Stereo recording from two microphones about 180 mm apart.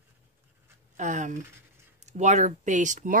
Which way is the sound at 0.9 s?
45° right (ahead or behind).